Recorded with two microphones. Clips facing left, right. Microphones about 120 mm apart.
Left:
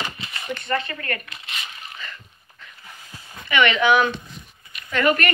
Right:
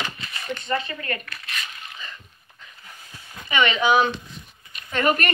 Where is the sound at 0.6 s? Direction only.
20° right (ahead or behind).